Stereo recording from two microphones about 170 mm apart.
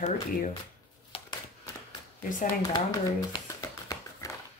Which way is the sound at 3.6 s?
20° left (ahead or behind).